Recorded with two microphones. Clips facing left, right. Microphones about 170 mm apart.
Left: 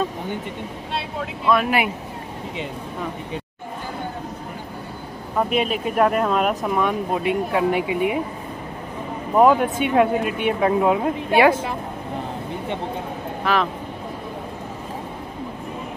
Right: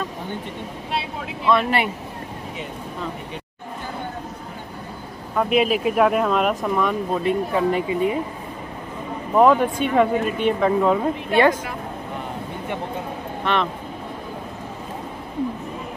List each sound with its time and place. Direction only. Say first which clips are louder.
0.9 s speech: even; centre (ahead or behind)
5.5 s speech: right 3 dB; 5° right (ahead or behind)
9.4 s speech: even; 5° left (ahead or behind)
13.4 s speech: left 1 dB; 5° left (ahead or behind)